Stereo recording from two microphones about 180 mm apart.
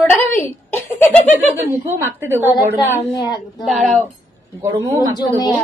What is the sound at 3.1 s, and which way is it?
Speech, 20° left (ahead or behind).